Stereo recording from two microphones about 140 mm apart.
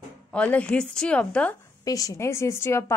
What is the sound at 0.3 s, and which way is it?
A woman's voice, 10° left (ahead or behind).